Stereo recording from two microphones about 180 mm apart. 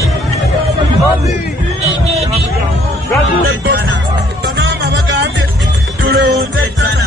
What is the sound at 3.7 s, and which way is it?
Music, 65° right (ahead or behind).